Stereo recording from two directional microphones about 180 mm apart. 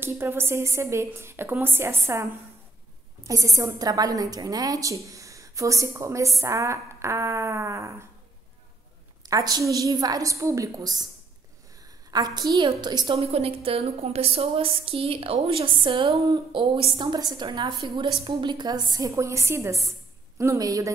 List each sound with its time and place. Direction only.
0.0 s a woman's voice: 10° right (ahead or behind)
3.3 s a woman's voice: 20° right (ahead or behind)
9.2 s a woman's voice: 20° right (ahead or behind)
12.1 s a woman's voice: 20° right (ahead or behind)